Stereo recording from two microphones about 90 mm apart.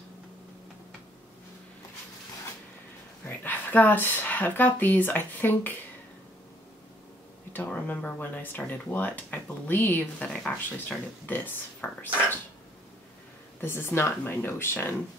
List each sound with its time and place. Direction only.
3.3 s speech: 20° left (ahead or behind)
7.5 s speech: 20° left (ahead or behind)
13.6 s speech: 25° left (ahead or behind)